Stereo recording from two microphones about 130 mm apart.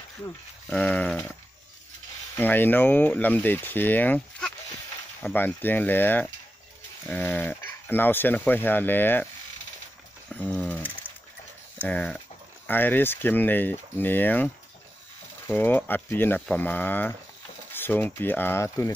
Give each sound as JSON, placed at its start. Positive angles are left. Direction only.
{"t": 0.7, "sound": "speech", "side_deg": 10}
{"t": 2.3, "sound": "speech", "side_deg": 15}
{"t": 10.3, "sound": "a sound", "side_deg": 10}
{"t": 11.8, "sound": "speech", "side_deg": 10}